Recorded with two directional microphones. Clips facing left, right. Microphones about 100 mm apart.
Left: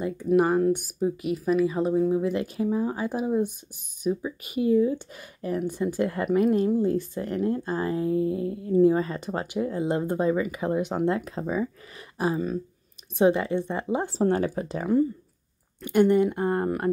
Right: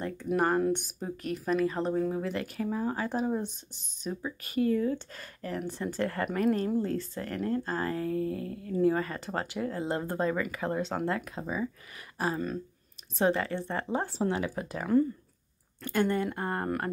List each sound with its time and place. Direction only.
0.4 s speech: 5° left (ahead or behind)
11.1 s speech: 30° left (ahead or behind)
13.2 s speech: 15° left (ahead or behind)
14.1 s speech: 40° left (ahead or behind)
14.5 s speech: 25° left (ahead or behind)